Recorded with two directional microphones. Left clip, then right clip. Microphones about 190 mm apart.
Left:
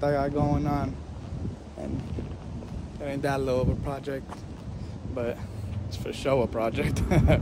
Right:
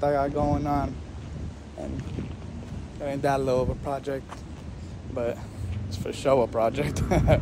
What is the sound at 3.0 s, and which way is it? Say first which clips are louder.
Speech: right 3 dB; 10° left (ahead or behind).